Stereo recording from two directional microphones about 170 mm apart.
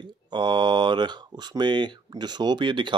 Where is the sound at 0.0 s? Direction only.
25° right (ahead or behind).